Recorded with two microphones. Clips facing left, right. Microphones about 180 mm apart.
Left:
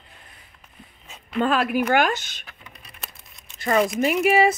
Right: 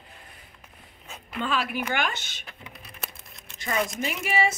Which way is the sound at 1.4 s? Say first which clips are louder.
Left 7 dB; 50° left (ahead or behind).